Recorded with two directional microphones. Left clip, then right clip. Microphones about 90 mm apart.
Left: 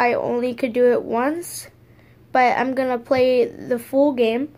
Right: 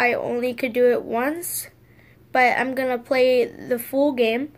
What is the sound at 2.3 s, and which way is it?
Speech, 35° left (ahead or behind).